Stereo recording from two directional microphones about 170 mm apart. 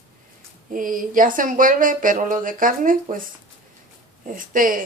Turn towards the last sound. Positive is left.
turn(degrees=-55)  # may be behind; listen again after turning